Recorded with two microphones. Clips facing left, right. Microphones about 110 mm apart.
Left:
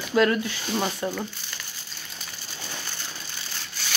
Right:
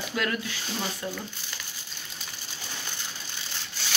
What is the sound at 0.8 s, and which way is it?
Speech, 50° left (ahead or behind).